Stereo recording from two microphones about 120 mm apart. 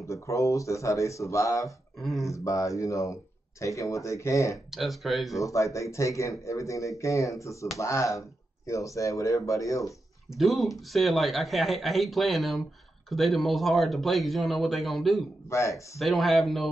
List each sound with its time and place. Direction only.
0.0 s speech: 25° left (ahead or behind)
2.0 s speech: centre (ahead or behind)
2.3 s speech: 25° left (ahead or behind)
4.6 s speech: centre (ahead or behind)
5.4 s speech: 25° left (ahead or behind)
10.3 s speech: centre (ahead or behind)